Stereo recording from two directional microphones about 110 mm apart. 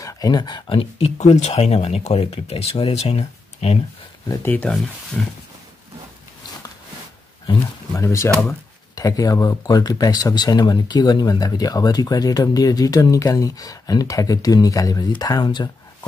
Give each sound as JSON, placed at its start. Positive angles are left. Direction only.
{"t": 0.0, "sound": "speech", "side_deg": 35}
{"t": 0.7, "sound": "speech", "side_deg": 65}
{"t": 4.5, "sound": "speech", "side_deg": 10}
{"t": 7.9, "sound": "speech", "side_deg": 25}